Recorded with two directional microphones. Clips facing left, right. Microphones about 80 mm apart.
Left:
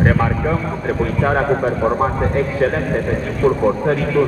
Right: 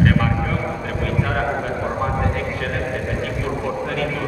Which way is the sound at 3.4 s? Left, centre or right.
Left.